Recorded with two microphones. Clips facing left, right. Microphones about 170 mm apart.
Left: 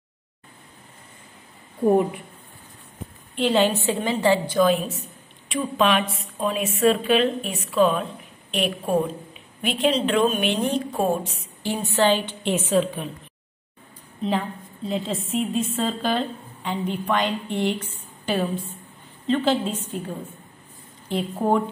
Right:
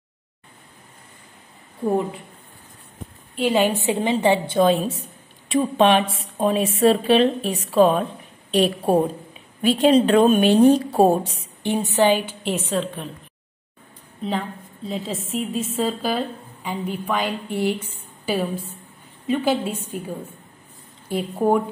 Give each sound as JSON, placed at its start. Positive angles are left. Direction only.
{"t": 3.3, "sound": "a woman's voice", "side_deg": -10}
{"t": 9.9, "sound": "a woman's voice", "side_deg": -55}
{"t": 10.4, "sound": "speech", "side_deg": -40}
{"t": 11.6, "sound": "a woman's voice", "side_deg": -20}
{"t": 14.9, "sound": "a woman's voice", "side_deg": 0}
{"t": 21.1, "sound": "a woman's voice", "side_deg": -10}